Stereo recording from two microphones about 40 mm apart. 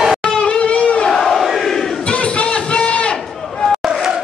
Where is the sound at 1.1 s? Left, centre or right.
Centre.